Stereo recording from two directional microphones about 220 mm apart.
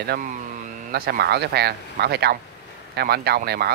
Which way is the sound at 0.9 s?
45° right (ahead or behind).